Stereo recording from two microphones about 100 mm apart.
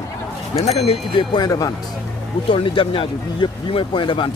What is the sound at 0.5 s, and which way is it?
Speech, 90° left.